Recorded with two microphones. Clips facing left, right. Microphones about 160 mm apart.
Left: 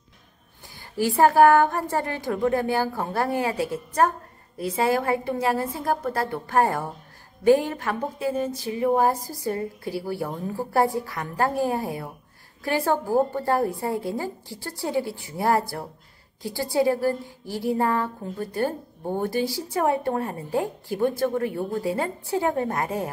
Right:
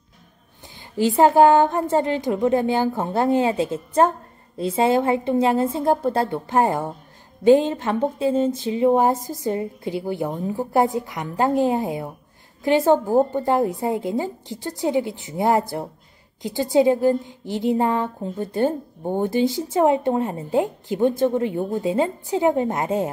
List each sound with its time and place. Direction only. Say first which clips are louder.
0.9 s a woman's voice: right 3 dB; 20° right (ahead or behind)